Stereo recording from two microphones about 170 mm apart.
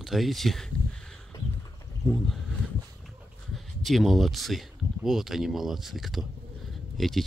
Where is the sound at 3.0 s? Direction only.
Centre (ahead or behind).